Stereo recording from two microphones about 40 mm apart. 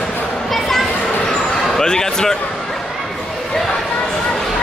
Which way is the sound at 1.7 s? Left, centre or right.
Centre.